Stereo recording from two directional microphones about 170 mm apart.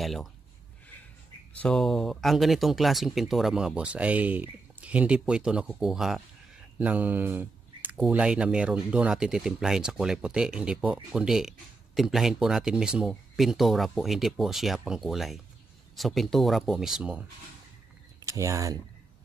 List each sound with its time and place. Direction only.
0.0 s speech: centre (ahead or behind)
1.5 s speech: 5° left (ahead or behind)
18.2 s speech: 20° right (ahead or behind)